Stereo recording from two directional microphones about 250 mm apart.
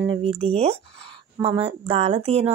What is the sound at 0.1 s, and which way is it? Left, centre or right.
Speech, right.